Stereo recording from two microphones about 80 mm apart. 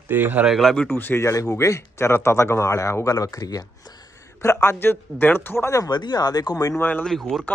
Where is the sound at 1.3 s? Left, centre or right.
Left.